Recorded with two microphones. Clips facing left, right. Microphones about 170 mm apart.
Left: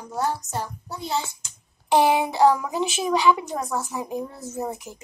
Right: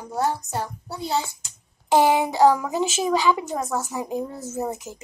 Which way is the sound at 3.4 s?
5° right (ahead or behind).